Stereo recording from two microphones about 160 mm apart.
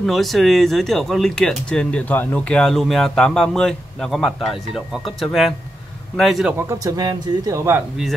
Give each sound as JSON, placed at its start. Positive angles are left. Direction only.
{"t": 0.0, "sound": "speech", "side_deg": 0}
{"t": 6.7, "sound": "speech", "side_deg": -20}